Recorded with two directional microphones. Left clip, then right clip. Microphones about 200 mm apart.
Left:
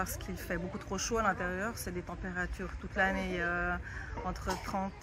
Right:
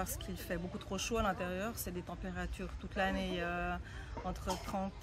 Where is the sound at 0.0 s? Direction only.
20° right (ahead or behind).